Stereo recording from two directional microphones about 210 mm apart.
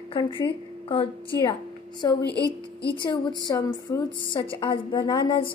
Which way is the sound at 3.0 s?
20° left (ahead or behind).